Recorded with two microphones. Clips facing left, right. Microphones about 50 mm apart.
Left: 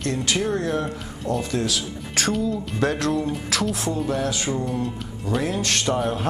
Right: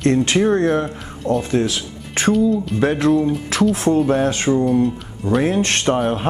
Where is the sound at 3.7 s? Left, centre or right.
Right.